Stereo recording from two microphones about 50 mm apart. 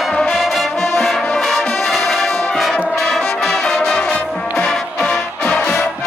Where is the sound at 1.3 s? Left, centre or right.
Centre.